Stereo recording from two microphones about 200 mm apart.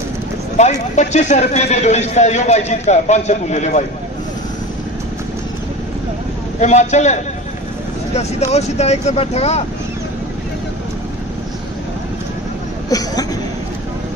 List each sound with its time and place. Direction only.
0.6 s speech: 35° left (ahead or behind)
6.6 s speech: 35° left (ahead or behind)
12.9 s chuckle: 20° left (ahead or behind)